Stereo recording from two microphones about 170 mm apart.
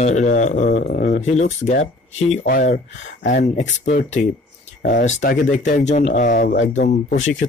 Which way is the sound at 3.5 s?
45° left (ahead or behind).